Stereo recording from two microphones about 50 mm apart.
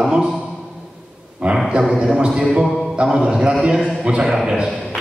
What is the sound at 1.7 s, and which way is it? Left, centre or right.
A man's voice, centre.